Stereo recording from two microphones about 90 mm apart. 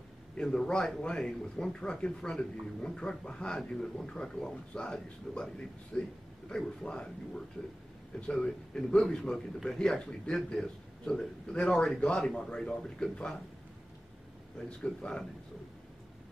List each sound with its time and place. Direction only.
0.4 s speech: 10° left (ahead or behind)
14.8 s speech: 10° left (ahead or behind)